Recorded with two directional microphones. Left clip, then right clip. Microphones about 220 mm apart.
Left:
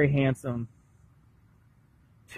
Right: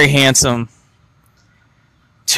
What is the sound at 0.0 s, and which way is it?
Speech, 30° right (ahead or behind).